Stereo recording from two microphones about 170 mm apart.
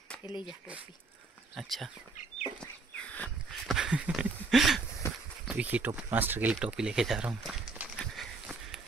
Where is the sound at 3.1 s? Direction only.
10° left (ahead or behind).